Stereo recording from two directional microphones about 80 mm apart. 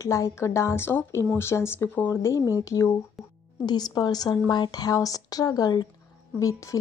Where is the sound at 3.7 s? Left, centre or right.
Left.